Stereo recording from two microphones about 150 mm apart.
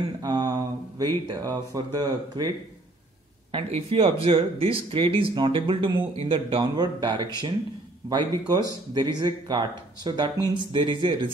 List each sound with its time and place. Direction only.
0.2 s speech: 25° right (ahead or behind)
3.5 s speech: 40° right (ahead or behind)